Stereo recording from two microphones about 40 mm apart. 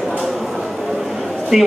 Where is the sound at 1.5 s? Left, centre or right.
Centre.